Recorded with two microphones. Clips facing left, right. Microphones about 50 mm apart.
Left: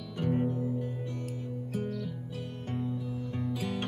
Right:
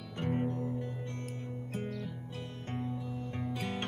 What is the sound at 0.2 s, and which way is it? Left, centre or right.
Music, right.